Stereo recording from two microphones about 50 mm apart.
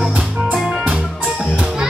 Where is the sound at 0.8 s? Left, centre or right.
Right.